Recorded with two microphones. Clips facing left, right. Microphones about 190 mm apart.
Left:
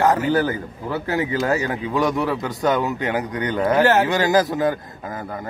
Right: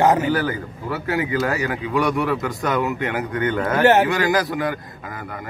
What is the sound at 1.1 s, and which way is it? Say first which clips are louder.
A man's voice: left 1 dB; 30° left (ahead or behind).